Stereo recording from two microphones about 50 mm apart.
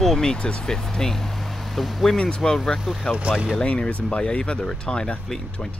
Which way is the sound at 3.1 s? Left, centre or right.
Right.